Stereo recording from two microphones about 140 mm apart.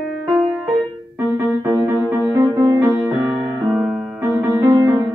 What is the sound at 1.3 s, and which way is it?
Music, 20° right (ahead or behind).